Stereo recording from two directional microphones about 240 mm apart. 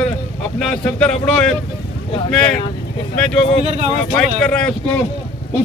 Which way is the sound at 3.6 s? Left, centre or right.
Right.